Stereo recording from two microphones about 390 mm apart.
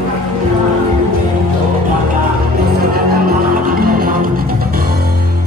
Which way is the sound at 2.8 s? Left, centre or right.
Right.